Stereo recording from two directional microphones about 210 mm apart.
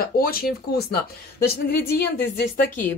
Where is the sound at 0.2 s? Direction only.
45° left (ahead or behind).